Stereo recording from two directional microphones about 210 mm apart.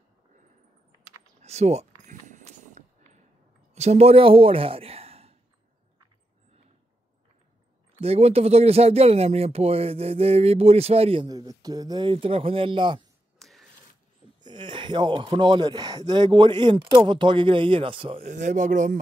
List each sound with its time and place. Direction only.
1.4 s speech: 30° right (ahead or behind)
2.0 s a sound: 35° right (ahead or behind)
3.7 s speech: 30° right (ahead or behind)
8.0 s speech: 30° right (ahead or behind)
13.4 s a sound: centre (ahead or behind)
14.4 s speech: 20° right (ahead or behind); by 18.9 s 35° right (ahead or behind)